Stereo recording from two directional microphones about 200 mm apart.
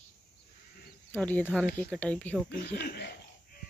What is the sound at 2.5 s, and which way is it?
Speech, 55° left (ahead or behind).